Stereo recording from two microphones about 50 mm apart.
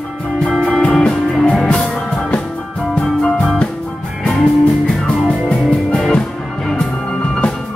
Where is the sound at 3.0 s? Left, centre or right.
Left.